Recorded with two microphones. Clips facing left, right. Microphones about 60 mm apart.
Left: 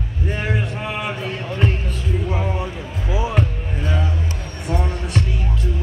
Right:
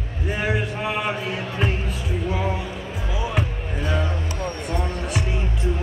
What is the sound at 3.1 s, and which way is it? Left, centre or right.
Basketball bounce, left.